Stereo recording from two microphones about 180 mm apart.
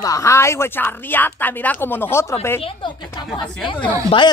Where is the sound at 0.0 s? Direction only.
20° left (ahead or behind).